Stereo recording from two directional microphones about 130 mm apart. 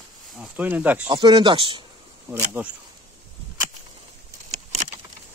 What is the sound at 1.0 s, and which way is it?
Speech, 35° right (ahead or behind).